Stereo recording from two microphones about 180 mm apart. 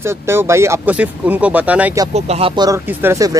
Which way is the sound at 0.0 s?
15° right (ahead or behind).